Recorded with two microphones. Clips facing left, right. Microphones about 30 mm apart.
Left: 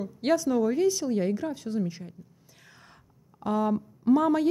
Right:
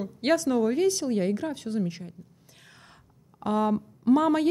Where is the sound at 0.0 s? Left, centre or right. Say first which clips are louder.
Right 1 dB; right.